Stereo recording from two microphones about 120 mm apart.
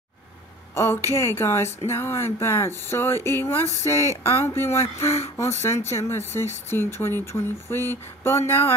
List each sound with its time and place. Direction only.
0.7 s speech: 20° left (ahead or behind)